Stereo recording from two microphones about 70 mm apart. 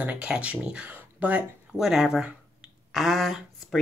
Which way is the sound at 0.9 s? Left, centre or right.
Right.